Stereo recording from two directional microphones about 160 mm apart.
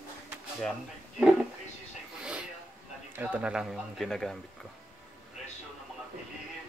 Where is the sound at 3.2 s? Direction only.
10° right (ahead or behind).